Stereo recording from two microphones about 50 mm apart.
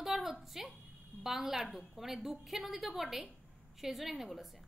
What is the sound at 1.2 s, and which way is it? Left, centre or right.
A woman's voice, centre.